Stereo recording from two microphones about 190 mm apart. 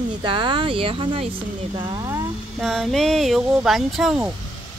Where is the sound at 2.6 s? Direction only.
Centre (ahead or behind).